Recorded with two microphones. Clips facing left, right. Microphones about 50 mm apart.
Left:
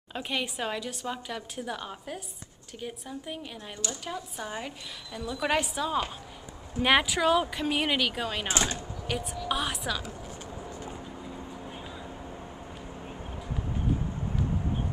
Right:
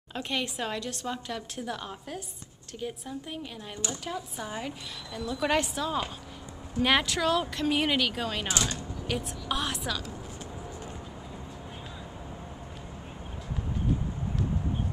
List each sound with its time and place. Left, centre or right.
0.1 s speech: centre
8.5 s speech: left
8.7 s a sound: centre
9.5 s speech: centre
10.9 s vehicle: centre
14.3 s a sound: centre